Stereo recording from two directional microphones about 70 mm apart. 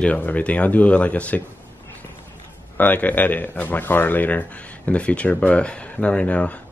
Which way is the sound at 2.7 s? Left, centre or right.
Left.